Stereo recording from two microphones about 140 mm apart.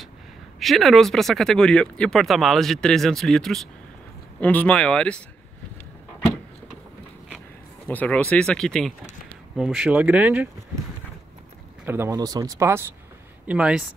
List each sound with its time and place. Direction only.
0.6 s speech: centre (ahead or behind)
7.9 s speech: 10° left (ahead or behind); by 10.5 s 10° right (ahead or behind)
11.8 s speech: 15° right (ahead or behind)
13.5 s speech: 5° right (ahead or behind)